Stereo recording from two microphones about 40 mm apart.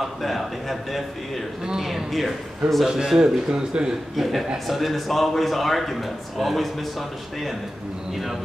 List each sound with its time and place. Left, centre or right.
0.0 s a man's voice: centre
3.2 s speech: right
4.2 s a man's voice: centre